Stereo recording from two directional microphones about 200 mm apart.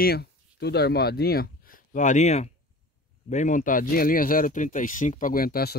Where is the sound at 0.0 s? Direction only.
55° left (ahead or behind).